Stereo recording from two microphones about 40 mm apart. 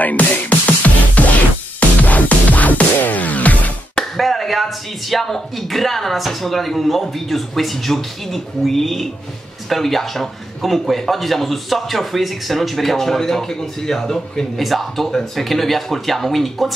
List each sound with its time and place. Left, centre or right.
0.0 s music: left
4.2 s speech: centre